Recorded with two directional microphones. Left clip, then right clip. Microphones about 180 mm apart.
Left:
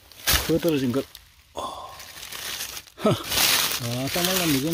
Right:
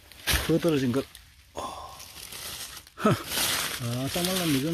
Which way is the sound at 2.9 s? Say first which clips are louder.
Left 2 dB; 10° left (ahead or behind).